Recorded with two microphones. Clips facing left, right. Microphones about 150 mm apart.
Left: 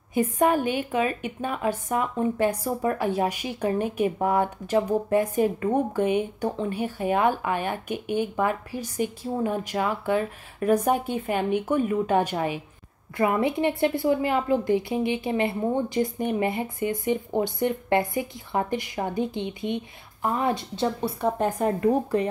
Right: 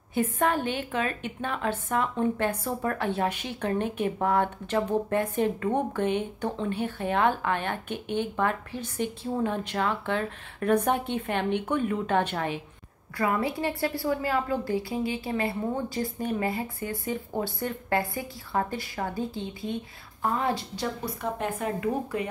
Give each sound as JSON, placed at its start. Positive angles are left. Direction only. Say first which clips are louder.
{"t": 0.1, "sound": "a woman's voice", "louder": "left 4 dB", "side_deg": 15}
{"t": 13.2, "sound": "a woman's voice", "louder": "left 4 dB", "side_deg": 20}